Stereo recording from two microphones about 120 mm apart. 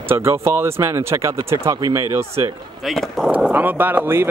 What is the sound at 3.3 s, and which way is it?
Speech, 10° right (ahead or behind).